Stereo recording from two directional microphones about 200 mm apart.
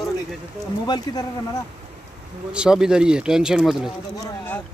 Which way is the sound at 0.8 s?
20° left (ahead or behind).